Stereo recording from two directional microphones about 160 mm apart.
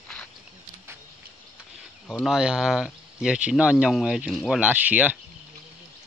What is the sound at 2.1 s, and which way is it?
Speech, centre (ahead or behind).